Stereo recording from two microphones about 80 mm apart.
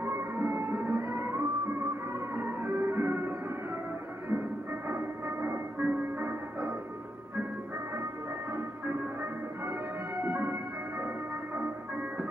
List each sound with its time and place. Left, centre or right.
0.0 s music: right
8.5 s music: right